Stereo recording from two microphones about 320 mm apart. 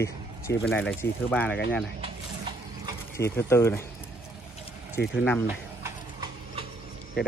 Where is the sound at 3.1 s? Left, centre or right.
Centre.